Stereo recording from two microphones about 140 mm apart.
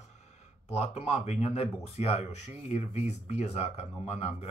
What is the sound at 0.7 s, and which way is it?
Speech, 50° left (ahead or behind).